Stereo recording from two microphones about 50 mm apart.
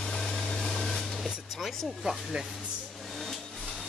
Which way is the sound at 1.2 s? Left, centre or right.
Centre.